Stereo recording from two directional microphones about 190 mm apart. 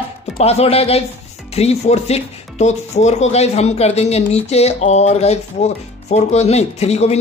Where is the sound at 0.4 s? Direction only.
35° left (ahead or behind).